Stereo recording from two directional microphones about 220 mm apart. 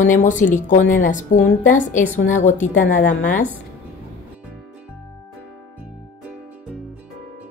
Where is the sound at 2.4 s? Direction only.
35° left (ahead or behind).